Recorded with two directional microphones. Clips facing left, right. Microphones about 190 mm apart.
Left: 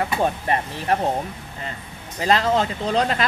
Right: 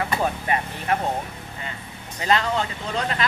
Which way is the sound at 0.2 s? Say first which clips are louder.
Left 2 dB; 35° left (ahead or behind).